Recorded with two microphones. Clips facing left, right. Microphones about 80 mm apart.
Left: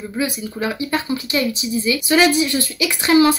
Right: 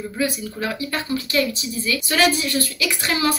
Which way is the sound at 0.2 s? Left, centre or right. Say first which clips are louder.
Left 2 dB; left.